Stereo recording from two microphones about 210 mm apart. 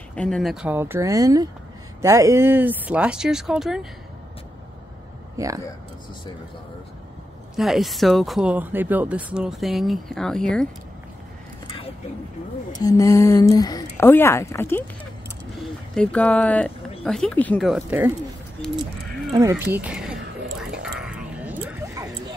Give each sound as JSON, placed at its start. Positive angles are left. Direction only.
{"t": 0.1, "sound": "speech", "side_deg": 5}
{"t": 5.4, "sound": "speech", "side_deg": -15}
{"t": 7.5, "sound": "speech", "side_deg": 0}
{"t": 12.7, "sound": "speech", "side_deg": 15}
{"t": 15.9, "sound": "speech", "side_deg": 5}
{"t": 19.3, "sound": "speech", "side_deg": -15}
{"t": 19.7, "sound": "a sound", "side_deg": -5}